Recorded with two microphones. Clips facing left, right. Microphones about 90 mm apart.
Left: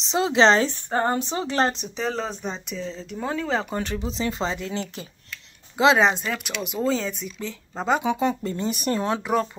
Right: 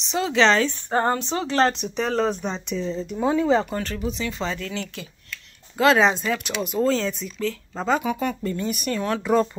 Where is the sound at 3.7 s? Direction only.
15° left (ahead or behind).